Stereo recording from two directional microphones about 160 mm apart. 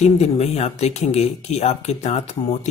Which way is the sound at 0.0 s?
40° left (ahead or behind).